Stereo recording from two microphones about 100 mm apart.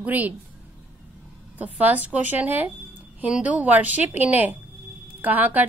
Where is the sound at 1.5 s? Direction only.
15° right (ahead or behind).